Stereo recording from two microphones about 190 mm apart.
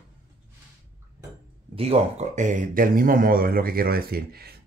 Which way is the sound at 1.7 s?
30° right (ahead or behind).